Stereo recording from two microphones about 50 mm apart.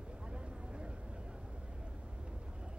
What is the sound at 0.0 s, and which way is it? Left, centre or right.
Vehicle, centre.